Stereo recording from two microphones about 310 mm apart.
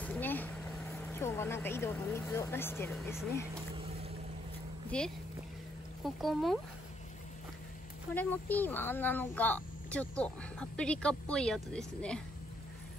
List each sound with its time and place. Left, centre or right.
0.0 s speech: centre
3.7 s boat: centre
4.9 s speech: centre
8.1 s speech: centre